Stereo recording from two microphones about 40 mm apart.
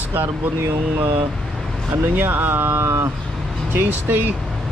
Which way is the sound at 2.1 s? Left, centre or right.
Right.